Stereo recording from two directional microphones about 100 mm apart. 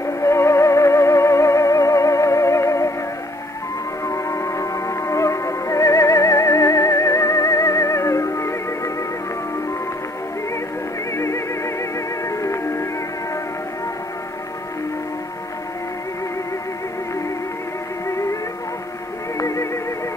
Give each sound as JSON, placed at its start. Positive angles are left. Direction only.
{"t": 0.2, "sound": "music", "side_deg": 30}
{"t": 4.0, "sound": "music", "side_deg": 30}
{"t": 11.1, "sound": "music", "side_deg": 30}
{"t": 19.3, "sound": "music", "side_deg": 30}